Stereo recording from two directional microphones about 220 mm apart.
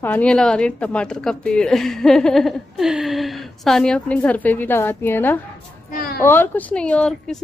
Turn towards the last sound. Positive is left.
turn(degrees=5)  # may be behind; listen again after turning